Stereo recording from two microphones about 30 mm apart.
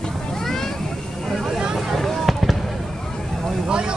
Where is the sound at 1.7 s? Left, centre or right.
Centre.